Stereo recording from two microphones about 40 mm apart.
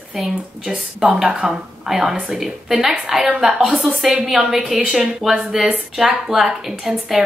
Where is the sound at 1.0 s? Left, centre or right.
Right.